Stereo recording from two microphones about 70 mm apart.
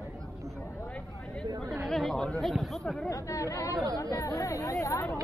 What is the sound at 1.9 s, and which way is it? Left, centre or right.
Speech, centre.